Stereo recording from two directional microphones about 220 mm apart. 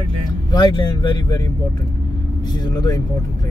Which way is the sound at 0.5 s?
20° left (ahead or behind).